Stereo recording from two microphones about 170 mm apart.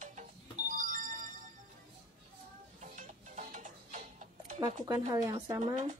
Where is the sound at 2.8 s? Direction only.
45° right (ahead or behind).